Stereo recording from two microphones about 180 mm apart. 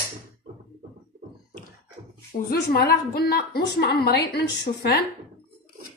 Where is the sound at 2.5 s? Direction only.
60° left (ahead or behind).